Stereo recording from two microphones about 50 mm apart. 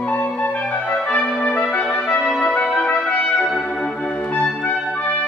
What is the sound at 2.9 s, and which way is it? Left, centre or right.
Brass instrument, centre.